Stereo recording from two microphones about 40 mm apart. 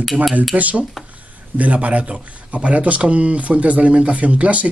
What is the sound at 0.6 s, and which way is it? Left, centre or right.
Speech, right.